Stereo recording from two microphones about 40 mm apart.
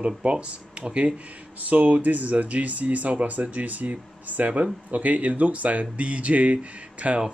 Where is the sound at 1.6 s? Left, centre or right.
Right.